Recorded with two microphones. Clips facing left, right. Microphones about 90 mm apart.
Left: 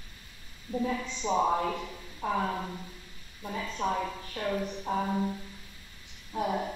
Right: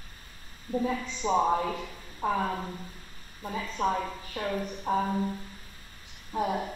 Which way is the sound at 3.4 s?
40° right (ahead or behind).